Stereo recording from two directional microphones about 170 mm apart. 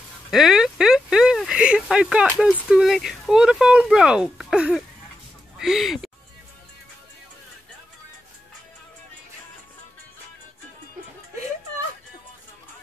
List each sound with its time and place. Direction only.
0.3 s speech: centre (ahead or behind)